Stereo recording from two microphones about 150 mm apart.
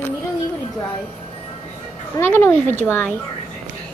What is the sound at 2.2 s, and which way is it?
Speech, 15° left (ahead or behind).